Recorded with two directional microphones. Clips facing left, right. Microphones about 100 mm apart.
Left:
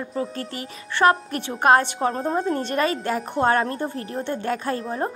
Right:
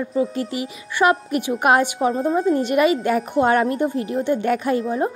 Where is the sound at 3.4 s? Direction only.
35° left (ahead or behind).